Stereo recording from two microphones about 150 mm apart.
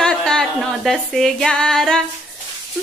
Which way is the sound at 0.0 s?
5° left (ahead or behind).